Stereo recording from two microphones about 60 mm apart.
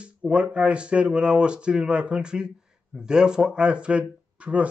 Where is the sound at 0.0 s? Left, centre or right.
Centre.